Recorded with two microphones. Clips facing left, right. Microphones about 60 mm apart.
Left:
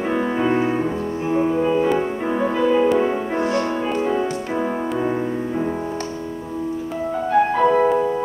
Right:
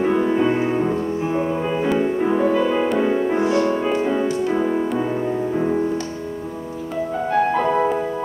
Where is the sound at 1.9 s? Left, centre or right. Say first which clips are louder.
Right 3 dB; centre.